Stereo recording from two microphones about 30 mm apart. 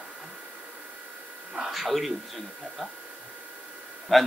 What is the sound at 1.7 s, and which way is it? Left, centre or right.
Speech, centre.